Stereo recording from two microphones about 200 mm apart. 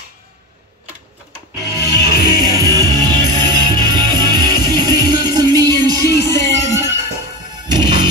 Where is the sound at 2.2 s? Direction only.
20° right (ahead or behind).